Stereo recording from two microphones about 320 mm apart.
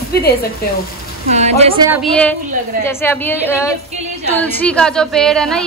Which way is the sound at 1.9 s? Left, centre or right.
Centre.